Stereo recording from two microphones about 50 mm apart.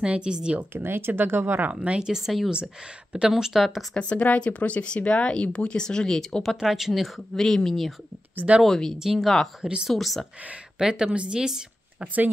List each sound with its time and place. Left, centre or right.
0.0 s speech: centre
0.7 s speech: right
2.0 s a woman's voice: centre
3.1 s a woman's voice: centre
3.9 s speech: left
6.5 s speech: centre
8.9 s speech: centre
9.6 s a woman's voice: centre
9.8 s speech: centre
10.8 s a woman's voice: centre
12.0 s speech: right